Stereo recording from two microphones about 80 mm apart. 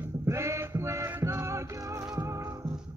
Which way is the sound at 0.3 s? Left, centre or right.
Right.